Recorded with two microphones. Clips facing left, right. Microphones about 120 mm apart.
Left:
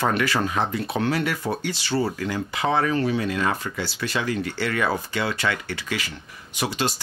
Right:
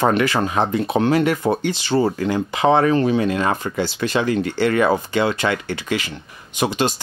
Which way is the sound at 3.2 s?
25° right (ahead or behind).